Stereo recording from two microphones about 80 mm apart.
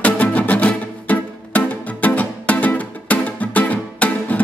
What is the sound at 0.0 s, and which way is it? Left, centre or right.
Music, centre.